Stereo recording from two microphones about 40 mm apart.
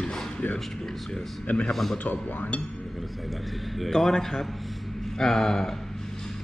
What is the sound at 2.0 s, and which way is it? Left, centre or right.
Speech, left.